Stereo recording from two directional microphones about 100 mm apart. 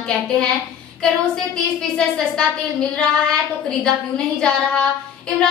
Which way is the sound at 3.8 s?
10° left (ahead or behind).